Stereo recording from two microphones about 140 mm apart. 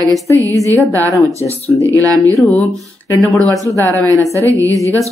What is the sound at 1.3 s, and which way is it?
Speech, 50° left (ahead or behind).